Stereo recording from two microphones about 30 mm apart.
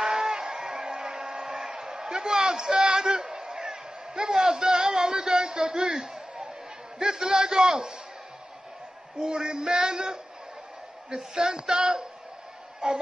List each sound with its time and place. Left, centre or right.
0.0 s a sound: centre
7.0 s a man's voice: right
9.2 s a man's voice: right